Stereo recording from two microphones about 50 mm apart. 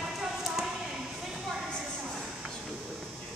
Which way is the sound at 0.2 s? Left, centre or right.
Centre.